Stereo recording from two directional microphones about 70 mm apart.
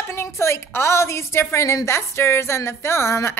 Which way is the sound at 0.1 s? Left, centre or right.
Left.